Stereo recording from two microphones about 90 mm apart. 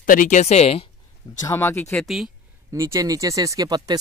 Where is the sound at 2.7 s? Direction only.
35° right (ahead or behind).